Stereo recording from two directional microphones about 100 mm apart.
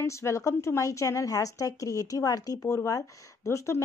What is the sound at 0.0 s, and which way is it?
Speech, 30° left (ahead or behind).